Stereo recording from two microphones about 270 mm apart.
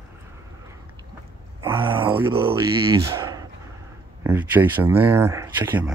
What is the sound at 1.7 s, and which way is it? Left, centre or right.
Speech, centre.